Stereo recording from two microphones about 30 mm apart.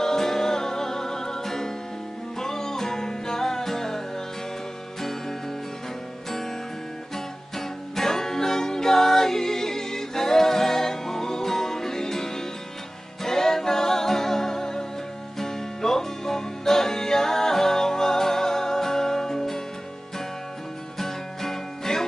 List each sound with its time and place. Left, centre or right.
0.0 s music: centre
7.5 s music: centre
21.0 s music: centre